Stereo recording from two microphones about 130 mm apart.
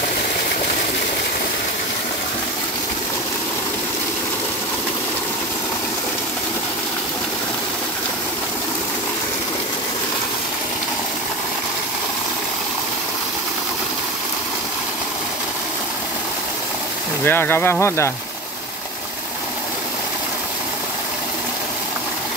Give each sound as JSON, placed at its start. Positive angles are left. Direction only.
{"t": 17.2, "sound": "speech", "side_deg": 15}